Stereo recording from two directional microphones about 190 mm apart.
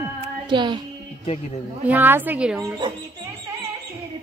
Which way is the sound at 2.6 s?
20° right (ahead or behind).